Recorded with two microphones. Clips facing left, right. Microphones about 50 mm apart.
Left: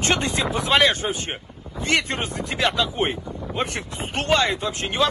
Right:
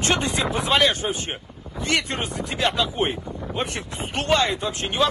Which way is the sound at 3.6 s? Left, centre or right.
Left.